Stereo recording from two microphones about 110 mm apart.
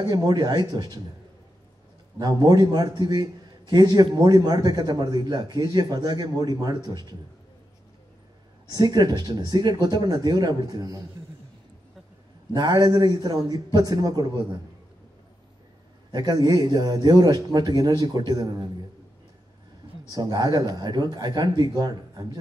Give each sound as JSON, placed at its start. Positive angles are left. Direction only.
{"t": 0.0, "sound": "a man's voice", "side_deg": -35}
{"t": 2.1, "sound": "a man's voice", "side_deg": -40}
{"t": 8.6, "sound": "a man's voice", "side_deg": -40}
{"t": 12.5, "sound": "a man's voice", "side_deg": -35}
{"t": 16.1, "sound": "a man's voice", "side_deg": -40}
{"t": 20.1, "sound": "a man's voice", "side_deg": -40}